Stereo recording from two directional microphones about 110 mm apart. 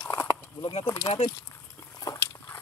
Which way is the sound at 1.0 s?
70° left (ahead or behind).